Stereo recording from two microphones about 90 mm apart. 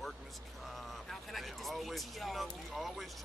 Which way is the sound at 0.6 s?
Centre (ahead or behind).